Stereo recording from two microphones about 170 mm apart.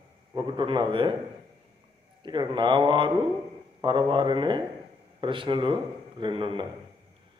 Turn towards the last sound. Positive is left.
turn(degrees=-30)  # may be behind; listen again after turning